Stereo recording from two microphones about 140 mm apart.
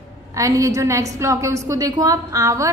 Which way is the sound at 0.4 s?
25° right (ahead or behind).